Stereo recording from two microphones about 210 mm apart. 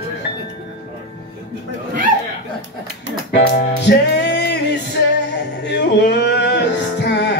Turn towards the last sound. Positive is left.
turn(degrees=55)  # may be behind; listen again after turning